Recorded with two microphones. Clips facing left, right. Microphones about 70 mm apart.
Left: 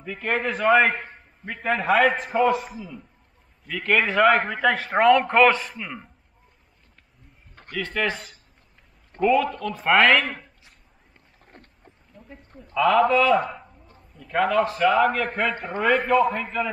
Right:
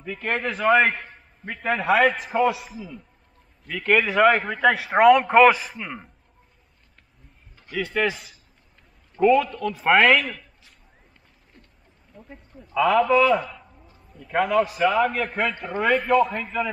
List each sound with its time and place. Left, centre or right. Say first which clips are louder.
0.0 s a man's voice: left 1 dB; centre
7.7 s a man's voice: right 2 dB; centre
11.5 s a sound: left 4 dB; left
12.1 s a man's voice: right 1 dB; centre